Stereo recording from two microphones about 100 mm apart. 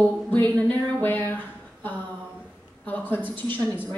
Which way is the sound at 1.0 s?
20° left (ahead or behind).